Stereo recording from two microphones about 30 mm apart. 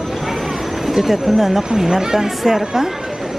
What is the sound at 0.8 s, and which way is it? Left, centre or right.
Speech, centre.